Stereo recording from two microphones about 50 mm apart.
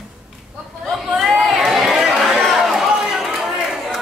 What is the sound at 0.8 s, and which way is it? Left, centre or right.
Chatter, centre.